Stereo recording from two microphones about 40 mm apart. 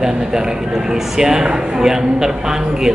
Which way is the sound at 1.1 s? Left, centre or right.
Centre.